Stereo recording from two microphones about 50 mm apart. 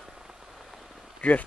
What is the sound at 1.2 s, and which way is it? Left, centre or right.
Speech, left.